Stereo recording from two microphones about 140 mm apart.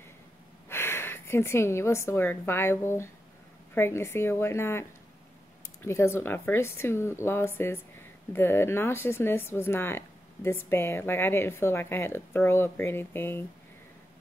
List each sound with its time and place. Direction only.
0.7 s a woman's voice: 15° left (ahead or behind)